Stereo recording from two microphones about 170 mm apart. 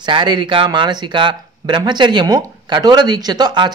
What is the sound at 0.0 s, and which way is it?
Speech, 25° right (ahead or behind).